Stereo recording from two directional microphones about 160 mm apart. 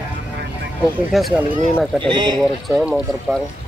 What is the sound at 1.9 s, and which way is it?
Speech, 30° right (ahead or behind).